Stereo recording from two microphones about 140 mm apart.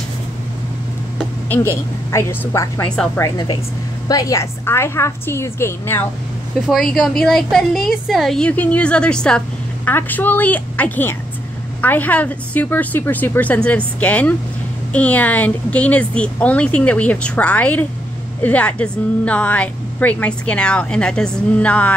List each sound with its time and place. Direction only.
1.5 s a woman's voice: 20° left (ahead or behind)
3.2 s a woman's voice: 30° left (ahead or behind)
6.9 s a woman's voice: 5° left (ahead or behind)